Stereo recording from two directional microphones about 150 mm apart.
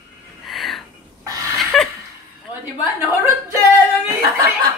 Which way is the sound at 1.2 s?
25° right (ahead or behind).